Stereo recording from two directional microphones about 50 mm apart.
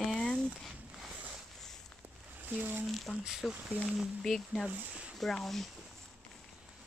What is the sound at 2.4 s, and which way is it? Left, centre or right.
Speech, right.